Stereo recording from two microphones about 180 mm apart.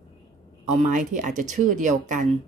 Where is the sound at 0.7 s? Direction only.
40° right (ahead or behind).